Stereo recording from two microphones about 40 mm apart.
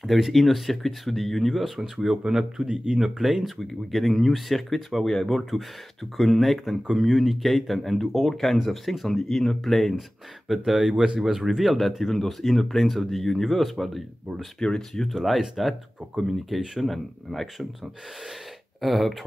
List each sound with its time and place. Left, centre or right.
0.0 s speech: centre; by 3.0 s right
3.0 s speech: centre
10.5 s speech: centre
15.1 s speech: centre
18.8 s speech: centre